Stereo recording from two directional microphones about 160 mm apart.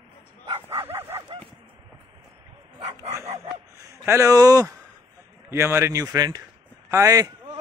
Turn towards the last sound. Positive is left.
turn(degrees=-20)  # may be behind; listen again after turning